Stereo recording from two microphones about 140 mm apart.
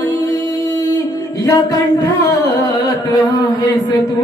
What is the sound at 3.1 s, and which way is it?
Speech, 25° left (ahead or behind).